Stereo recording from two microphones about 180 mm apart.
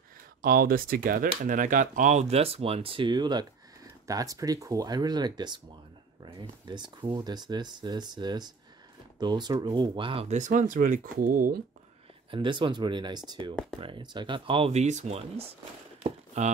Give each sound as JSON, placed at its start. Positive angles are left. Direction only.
{"t": 0.4, "sound": "speech", "side_deg": -55}
{"t": 12.3, "sound": "speech", "side_deg": -25}